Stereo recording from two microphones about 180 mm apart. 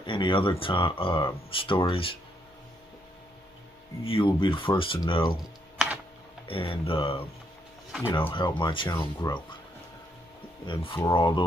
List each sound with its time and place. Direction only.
0.0 s speech: 25° left (ahead or behind)
4.0 s speech: 30° left (ahead or behind)
6.4 s speech: 30° left (ahead or behind)
8.3 s speech: 25° left (ahead or behind)
10.7 s speech: 25° left (ahead or behind)